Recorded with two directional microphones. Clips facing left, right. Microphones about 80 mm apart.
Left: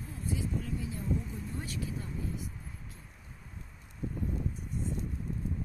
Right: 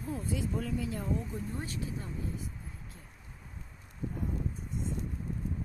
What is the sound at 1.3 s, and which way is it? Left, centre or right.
Speech, right.